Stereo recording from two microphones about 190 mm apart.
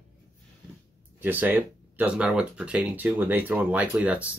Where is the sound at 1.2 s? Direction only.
10° right (ahead or behind).